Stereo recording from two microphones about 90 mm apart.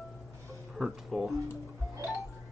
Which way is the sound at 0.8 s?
5° right (ahead or behind).